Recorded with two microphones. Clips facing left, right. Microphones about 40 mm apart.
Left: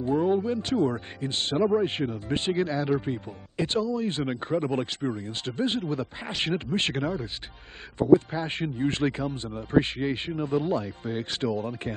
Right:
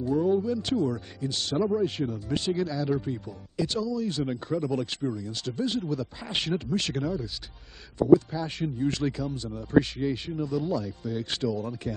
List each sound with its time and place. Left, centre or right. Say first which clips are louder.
0.0 s speech: left 1 dB; left